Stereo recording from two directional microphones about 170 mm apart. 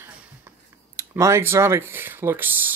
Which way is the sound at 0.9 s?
15° right (ahead or behind).